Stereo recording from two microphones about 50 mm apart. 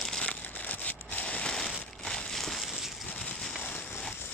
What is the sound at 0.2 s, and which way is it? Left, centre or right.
Crumpling, left.